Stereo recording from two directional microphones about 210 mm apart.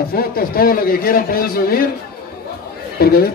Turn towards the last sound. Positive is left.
turn(degrees=45)  # may be behind; listen again after turning